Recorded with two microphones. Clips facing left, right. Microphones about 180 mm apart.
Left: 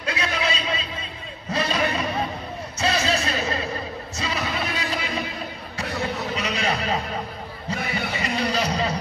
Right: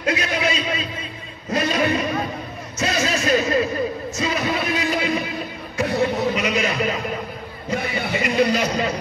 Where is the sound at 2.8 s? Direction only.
30° left (ahead or behind).